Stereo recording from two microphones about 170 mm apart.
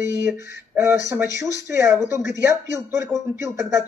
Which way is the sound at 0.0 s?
15° right (ahead or behind).